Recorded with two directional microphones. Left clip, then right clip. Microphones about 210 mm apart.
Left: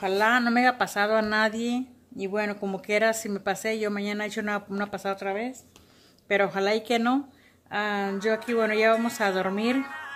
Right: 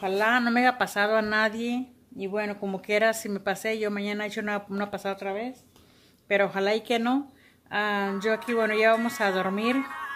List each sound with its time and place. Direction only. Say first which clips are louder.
0.0 s speech: left 1 dB; 5° left (ahead or behind)
9.8 s speech: right 1 dB; 15° right (ahead or behind)